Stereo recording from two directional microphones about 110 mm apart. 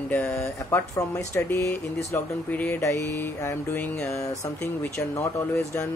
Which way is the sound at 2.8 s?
25° left (ahead or behind).